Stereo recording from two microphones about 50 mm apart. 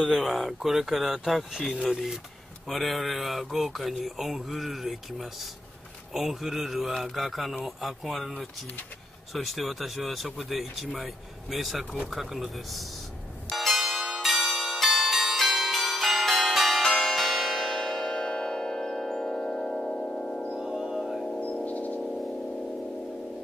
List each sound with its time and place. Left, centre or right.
0.1 s speech: centre
13.5 s change ringing: centre
16.8 s change ringing: centre
17.7 s church bell: centre
19.9 s music: left
20.5 s music: centre
21.6 s music: left
22.0 s a sound: centre